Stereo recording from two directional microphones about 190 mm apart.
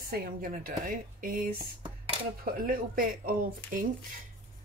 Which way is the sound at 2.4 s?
50° right (ahead or behind).